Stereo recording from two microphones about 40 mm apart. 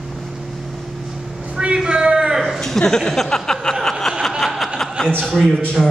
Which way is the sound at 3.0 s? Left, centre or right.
Centre.